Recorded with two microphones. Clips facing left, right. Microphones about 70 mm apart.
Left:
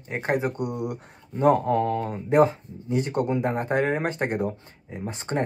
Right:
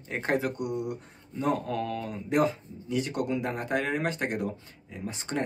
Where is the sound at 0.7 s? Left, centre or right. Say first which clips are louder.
Left 2 dB; left.